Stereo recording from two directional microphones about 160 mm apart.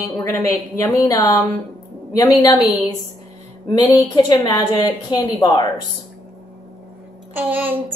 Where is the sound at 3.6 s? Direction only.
25° left (ahead or behind).